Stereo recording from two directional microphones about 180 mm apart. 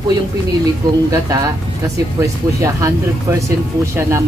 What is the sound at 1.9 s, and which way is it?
Speech, 20° right (ahead or behind).